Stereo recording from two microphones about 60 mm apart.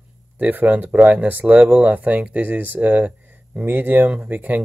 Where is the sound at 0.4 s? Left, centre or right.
Right.